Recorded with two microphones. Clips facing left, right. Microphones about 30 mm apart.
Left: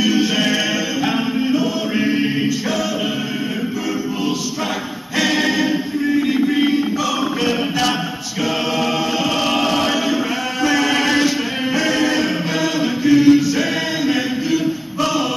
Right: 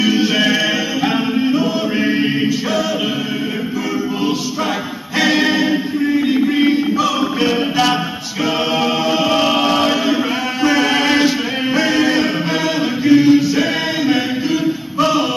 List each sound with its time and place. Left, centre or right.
0.0 s music: centre
5.1 s music: centre
7.4 s a capella: centre
10.6 s music: centre
13.0 s chant: centre